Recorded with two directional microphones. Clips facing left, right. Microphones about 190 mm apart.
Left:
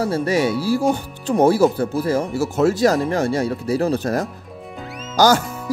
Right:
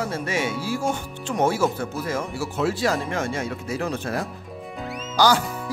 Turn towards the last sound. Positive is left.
turn(degrees=45)  # may be behind; listen again after turning